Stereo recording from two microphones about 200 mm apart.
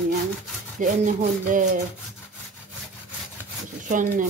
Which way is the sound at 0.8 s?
40° right (ahead or behind).